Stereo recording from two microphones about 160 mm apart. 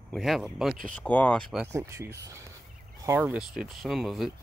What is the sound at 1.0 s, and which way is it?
Speech, 10° left (ahead or behind).